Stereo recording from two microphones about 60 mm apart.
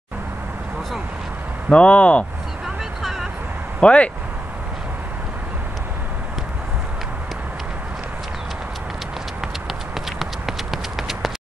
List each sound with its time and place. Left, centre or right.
1.7 s speech: centre
3.0 s vehicle: centre
3.8 s speech: centre
10.1 s a sound: centre